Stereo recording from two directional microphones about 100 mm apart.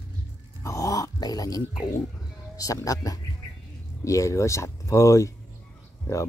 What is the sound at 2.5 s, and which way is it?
Speech, 35° left (ahead or behind).